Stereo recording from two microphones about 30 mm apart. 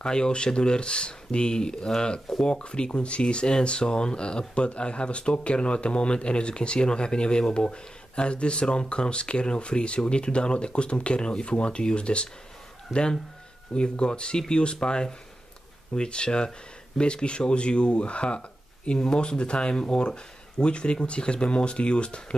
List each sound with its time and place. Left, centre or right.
0.0 s speech: left